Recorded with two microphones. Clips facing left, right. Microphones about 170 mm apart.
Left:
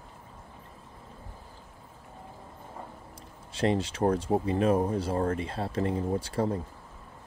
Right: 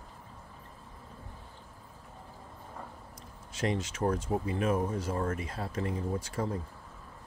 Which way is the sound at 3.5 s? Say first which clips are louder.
Left 5 dB; 30° left (ahead or behind).